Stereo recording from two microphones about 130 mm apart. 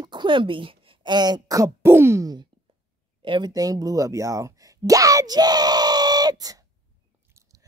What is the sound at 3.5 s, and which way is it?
Speech, 30° right (ahead or behind).